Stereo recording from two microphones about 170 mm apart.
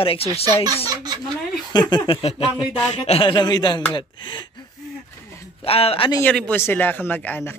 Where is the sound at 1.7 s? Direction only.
25° left (ahead or behind).